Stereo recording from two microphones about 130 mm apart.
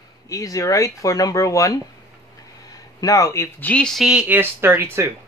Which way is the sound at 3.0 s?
25° left (ahead or behind).